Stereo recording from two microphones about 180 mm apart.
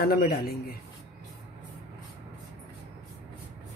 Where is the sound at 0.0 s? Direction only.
55° left (ahead or behind).